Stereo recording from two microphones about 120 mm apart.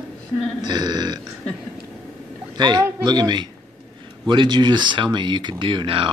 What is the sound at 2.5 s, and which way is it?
A man's voice, 35° right (ahead or behind).